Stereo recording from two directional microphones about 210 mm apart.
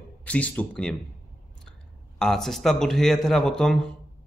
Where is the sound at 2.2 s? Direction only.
Centre (ahead or behind).